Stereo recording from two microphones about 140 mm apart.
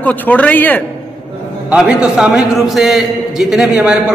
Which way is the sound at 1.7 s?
5° right (ahead or behind).